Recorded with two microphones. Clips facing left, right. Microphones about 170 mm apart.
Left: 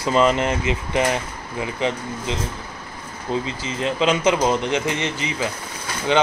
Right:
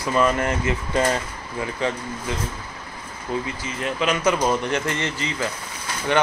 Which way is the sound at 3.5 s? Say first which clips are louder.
Left 3 dB; 25° left (ahead or behind).